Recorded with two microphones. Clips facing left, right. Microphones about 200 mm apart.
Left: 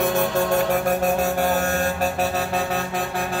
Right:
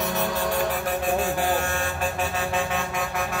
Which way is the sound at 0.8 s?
45° left (ahead or behind).